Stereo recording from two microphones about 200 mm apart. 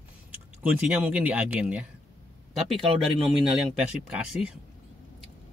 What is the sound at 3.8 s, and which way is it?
Speech, 5° right (ahead or behind).